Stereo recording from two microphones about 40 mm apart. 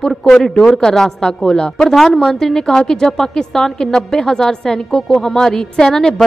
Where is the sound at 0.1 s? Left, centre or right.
Centre.